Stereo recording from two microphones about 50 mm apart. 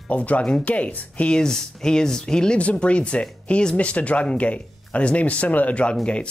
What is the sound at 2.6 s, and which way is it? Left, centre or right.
Speech, left.